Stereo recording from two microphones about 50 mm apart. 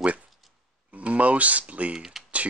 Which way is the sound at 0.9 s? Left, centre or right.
Right.